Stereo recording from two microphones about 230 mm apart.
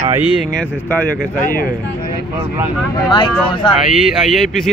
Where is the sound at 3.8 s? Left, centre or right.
Centre.